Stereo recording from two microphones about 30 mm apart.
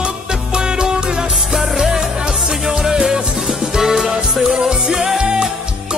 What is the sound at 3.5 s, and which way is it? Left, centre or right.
Music, centre.